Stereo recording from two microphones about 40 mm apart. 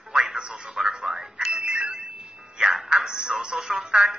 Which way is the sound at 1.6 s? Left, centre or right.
Right.